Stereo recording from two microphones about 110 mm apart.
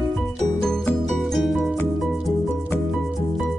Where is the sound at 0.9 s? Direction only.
Centre (ahead or behind).